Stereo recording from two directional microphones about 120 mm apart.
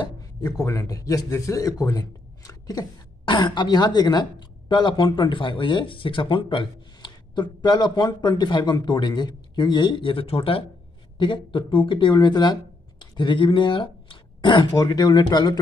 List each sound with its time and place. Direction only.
0.6 s a man's voice: 25° left (ahead or behind)